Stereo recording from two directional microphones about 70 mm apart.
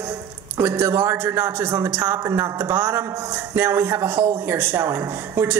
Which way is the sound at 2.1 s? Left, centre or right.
Right.